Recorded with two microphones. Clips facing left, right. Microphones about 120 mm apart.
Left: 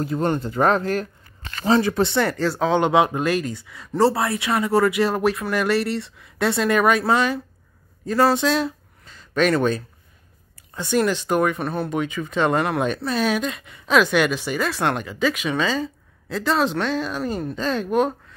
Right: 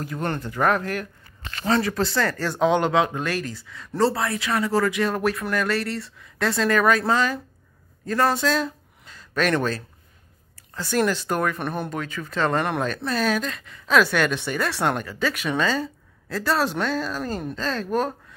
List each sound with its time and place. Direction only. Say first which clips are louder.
0.0 s speech: left 6 dB; 30° left (ahead or behind)
3.6 s speech: left 3 dB; 10° left (ahead or behind)
4.1 s speech: left 3 dB; 25° left (ahead or behind); by 8.7 s 5° left (ahead or behind)
9.0 s a sound: left 4 dB; centre (ahead or behind)
11.1 s speech: left 3 dB; 10° left (ahead or behind)
14.8 s speech: left 1 dB; centre (ahead or behind)
15.0 s speech: left 4 dB; 15° left (ahead or behind)
15.3 s speech: left 1 dB; centre (ahead or behind)